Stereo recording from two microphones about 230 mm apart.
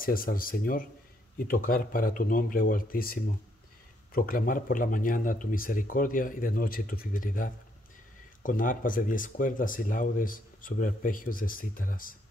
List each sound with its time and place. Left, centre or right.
0.0 s speech: left